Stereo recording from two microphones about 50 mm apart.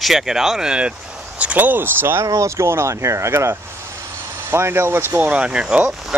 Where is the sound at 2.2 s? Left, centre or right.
Right.